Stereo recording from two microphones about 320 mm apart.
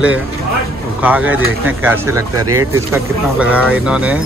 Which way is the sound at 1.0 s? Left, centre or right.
Centre.